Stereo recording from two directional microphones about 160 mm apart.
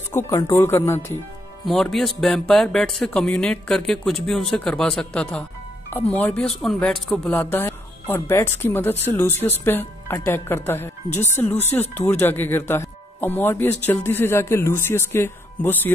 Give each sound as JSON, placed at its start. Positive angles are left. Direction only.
{"t": 0.1, "sound": "speech", "side_deg": 20}
{"t": 1.7, "sound": "speech", "side_deg": 0}